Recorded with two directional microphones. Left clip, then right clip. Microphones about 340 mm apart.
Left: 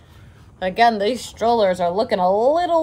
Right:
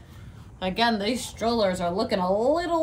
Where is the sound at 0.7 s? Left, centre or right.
Centre.